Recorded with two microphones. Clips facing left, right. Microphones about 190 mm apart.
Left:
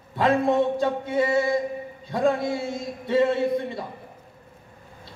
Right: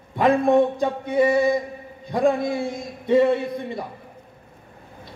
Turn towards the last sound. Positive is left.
turn(degrees=-20)  # may be behind; listen again after turning